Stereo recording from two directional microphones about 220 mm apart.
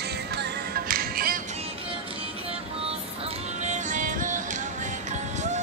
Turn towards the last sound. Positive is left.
turn(degrees=-35)  # may be behind; listen again after turning